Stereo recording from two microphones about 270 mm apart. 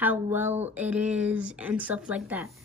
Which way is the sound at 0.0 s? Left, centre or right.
Centre.